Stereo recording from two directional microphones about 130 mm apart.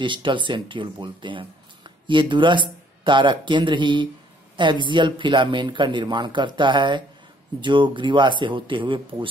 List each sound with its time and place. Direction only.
0.0 s speech: 40° right (ahead or behind)